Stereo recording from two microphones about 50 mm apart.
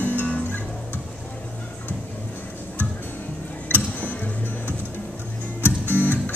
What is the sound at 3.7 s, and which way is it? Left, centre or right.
Tick-tock, left.